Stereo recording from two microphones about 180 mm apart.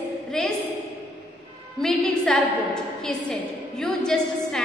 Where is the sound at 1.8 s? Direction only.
Centre (ahead or behind).